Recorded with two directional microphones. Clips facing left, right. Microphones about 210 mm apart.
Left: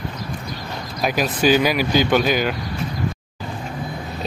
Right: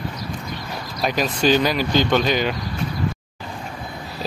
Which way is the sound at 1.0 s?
5° left (ahead or behind).